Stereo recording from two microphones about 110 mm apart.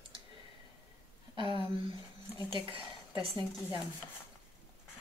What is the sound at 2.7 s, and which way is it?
Speech, 50° right (ahead or behind).